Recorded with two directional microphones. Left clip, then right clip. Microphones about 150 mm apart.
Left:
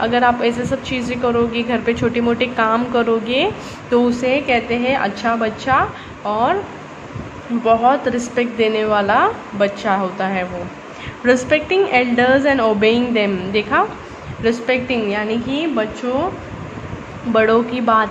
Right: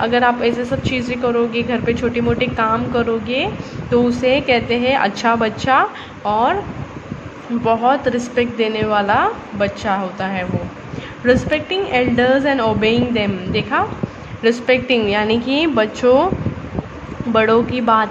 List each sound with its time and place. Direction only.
0.0 s a woman's voice: 5° right (ahead or behind)
7.6 s a woman's voice: 5° right (ahead or behind); by 16.3 s 25° right (ahead or behind)
17.3 s speech: 5° right (ahead or behind)